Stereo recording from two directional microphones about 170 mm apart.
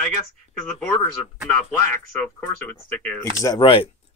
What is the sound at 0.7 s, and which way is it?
Speech, 5° left (ahead or behind).